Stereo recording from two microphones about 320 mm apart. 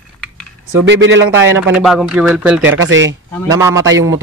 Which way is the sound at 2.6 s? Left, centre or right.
Right.